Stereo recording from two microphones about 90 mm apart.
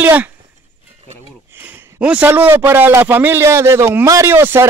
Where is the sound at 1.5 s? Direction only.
25° right (ahead or behind).